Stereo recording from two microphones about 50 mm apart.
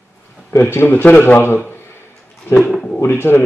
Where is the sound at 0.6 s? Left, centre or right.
Left.